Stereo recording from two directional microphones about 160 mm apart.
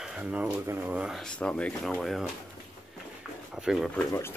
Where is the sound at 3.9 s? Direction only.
15° left (ahead or behind).